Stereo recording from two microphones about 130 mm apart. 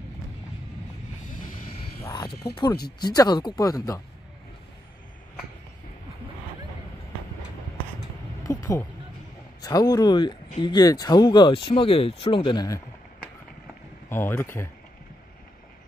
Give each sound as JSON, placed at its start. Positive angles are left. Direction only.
{"t": 2.1, "sound": "speech", "side_deg": 35}
{"t": 8.5, "sound": "a sound", "side_deg": 25}
{"t": 9.6, "sound": "speech", "side_deg": 30}
{"t": 14.0, "sound": "speech", "side_deg": 15}